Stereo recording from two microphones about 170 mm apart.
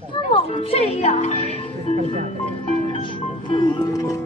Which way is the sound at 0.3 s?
35° left (ahead or behind).